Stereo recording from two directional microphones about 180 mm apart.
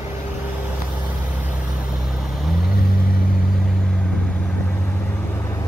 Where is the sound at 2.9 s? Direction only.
55° left (ahead or behind).